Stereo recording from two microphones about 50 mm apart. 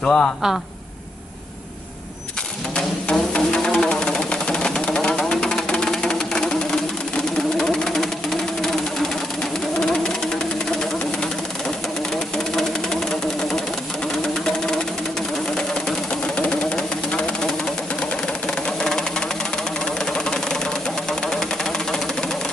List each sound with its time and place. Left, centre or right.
0.0 s a man's voice: centre
2.7 s music: centre
7.5 s engine: centre
16.3 s vehicle: left